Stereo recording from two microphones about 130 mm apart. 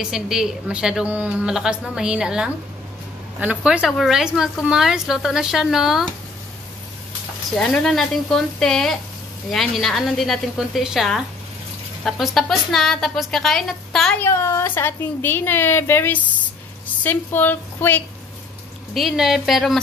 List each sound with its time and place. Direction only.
0.0 s a woman's voice: 5° right (ahead or behind)
7.5 s a woman's voice: 5° left (ahead or behind)
14.2 s a woman's voice: 20° left (ahead or behind)
18.9 s a woman's voice: centre (ahead or behind)